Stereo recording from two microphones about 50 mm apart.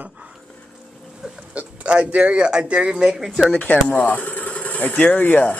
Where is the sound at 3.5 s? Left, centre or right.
Left.